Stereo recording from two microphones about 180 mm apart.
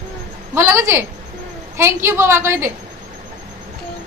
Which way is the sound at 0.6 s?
15° right (ahead or behind).